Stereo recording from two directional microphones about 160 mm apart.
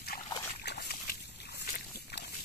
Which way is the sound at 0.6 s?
80° left.